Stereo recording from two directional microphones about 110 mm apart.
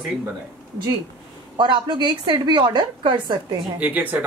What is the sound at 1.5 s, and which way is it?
A woman's voice, 45° right (ahead or behind).